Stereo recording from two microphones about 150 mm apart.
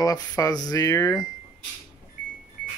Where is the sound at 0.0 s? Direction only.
25° left (ahead or behind).